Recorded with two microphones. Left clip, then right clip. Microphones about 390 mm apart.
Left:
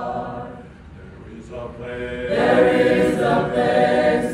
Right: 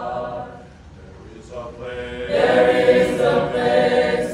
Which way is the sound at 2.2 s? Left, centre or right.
Centre.